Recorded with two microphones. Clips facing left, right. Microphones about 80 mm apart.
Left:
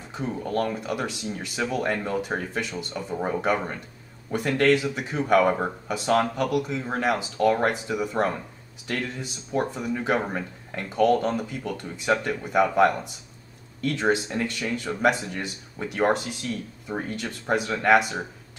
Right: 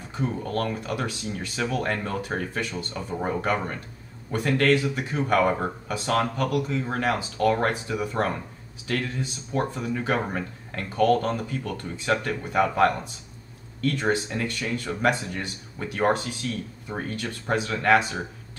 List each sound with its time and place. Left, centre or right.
0.3 s speech: centre